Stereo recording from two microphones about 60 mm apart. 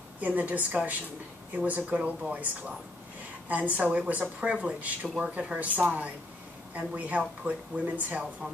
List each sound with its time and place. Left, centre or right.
0.2 s speech: right
3.4 s speech: right